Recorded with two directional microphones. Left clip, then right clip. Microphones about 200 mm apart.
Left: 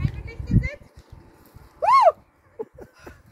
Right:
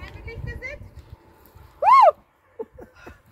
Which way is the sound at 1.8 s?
30° right (ahead or behind).